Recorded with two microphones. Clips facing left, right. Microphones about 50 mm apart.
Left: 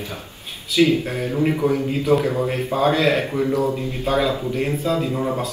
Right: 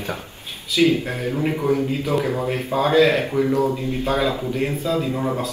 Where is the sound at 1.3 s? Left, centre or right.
Left.